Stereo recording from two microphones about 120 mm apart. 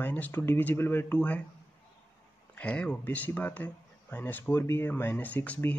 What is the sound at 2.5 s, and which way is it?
Speech, 10° left (ahead or behind).